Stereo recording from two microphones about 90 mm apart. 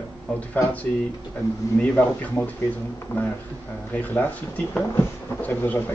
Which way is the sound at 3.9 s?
15° left (ahead or behind).